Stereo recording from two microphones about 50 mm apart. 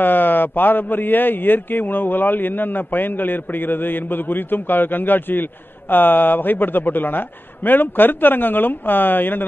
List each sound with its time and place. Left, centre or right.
0.0 s a man's voice: left